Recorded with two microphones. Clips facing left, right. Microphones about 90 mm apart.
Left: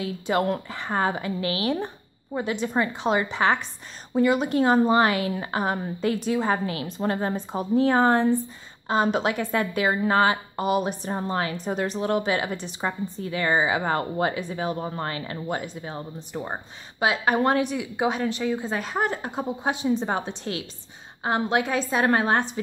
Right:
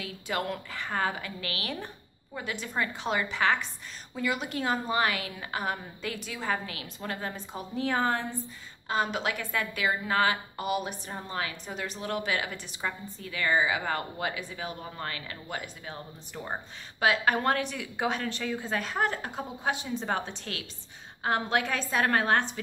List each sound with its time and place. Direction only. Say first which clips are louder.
0.0 s a woman's voice: left 8 dB; 30° left (ahead or behind)